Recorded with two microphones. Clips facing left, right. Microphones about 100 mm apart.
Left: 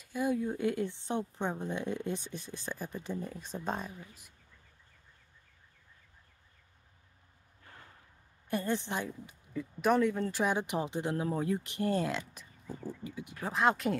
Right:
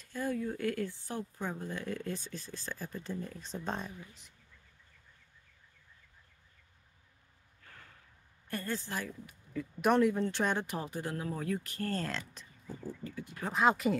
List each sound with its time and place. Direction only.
0.0 s a woman's voice: 15° left (ahead or behind)
7.6 s a sound: 20° left (ahead or behind)
8.5 s a woman's voice: 20° left (ahead or behind)
9.5 s a woman's voice: centre (ahead or behind)
13.5 s speech: centre (ahead or behind)